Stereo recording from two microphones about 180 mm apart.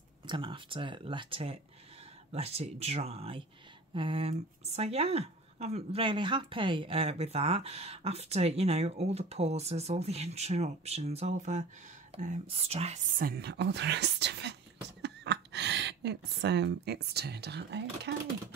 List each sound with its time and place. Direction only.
0.3 s speech: 30° right (ahead or behind)
13.2 s speech: 60° right (ahead or behind)